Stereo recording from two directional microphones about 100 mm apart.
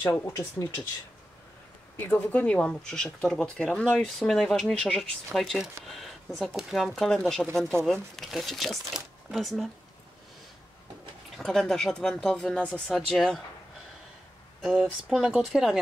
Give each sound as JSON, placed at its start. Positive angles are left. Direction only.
{"t": 0.0, "sound": "speech", "side_deg": 30}
{"t": 2.0, "sound": "speech", "side_deg": 20}
{"t": 11.3, "sound": "speech", "side_deg": 5}
{"t": 14.6, "sound": "speech", "side_deg": -10}